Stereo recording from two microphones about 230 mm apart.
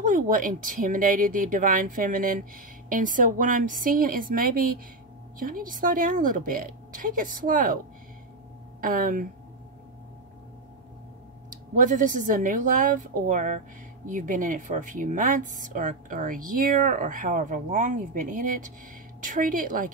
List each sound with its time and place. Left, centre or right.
0.0 s speech: right
8.8 s speech: right
11.7 s speech: right